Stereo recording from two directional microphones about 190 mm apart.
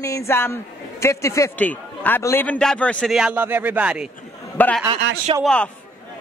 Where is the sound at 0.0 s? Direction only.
15° left (ahead or behind); by 4.1 s 5° right (ahead or behind).